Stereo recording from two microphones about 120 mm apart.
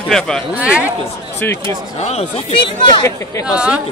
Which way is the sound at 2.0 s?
60° left (ahead or behind).